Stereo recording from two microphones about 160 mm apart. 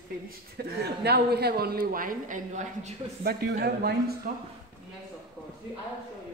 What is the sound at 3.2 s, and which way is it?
Speech, 85° right.